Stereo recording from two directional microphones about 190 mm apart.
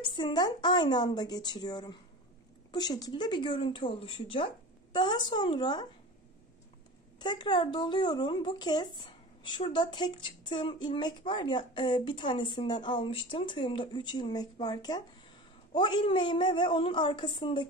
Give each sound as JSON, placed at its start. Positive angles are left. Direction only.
{"t": 0.0, "sound": "speech", "side_deg": 25}
{"t": 7.2, "sound": "speech", "side_deg": 20}